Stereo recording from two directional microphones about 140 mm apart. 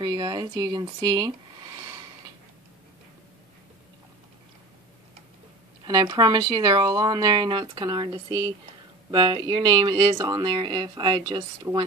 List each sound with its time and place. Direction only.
0.0 s speech: 30° right (ahead or behind)
5.9 s speech: 30° right (ahead or behind)